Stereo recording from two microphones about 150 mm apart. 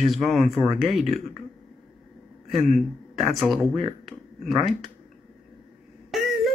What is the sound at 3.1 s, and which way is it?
A man's voice, centre (ahead or behind).